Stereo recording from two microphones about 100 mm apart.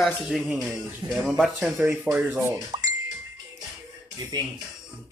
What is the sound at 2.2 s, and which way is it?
Speech, 10° right (ahead or behind).